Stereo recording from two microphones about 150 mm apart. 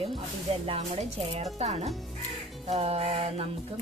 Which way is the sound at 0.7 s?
45° right (ahead or behind).